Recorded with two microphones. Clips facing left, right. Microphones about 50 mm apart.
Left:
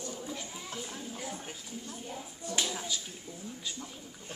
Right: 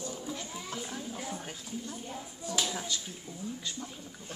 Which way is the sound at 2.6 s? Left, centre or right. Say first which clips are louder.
Even; centre.